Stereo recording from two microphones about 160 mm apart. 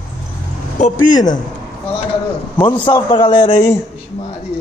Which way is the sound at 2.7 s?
30° left (ahead or behind).